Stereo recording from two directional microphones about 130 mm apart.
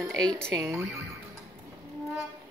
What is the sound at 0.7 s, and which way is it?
Speech, 20° right (ahead or behind).